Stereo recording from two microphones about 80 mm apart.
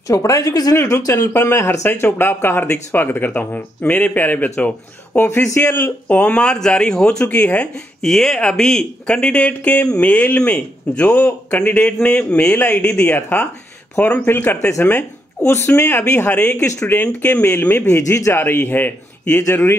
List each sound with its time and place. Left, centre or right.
0.1 s speech: left
6.0 s speech: centre
8.0 s speech: centre
12.5 s a man's voice: left